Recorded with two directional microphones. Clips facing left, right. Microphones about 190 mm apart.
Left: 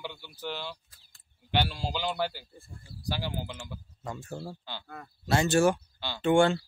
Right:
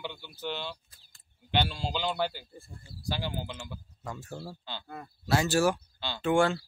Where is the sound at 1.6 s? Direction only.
10° left (ahead or behind).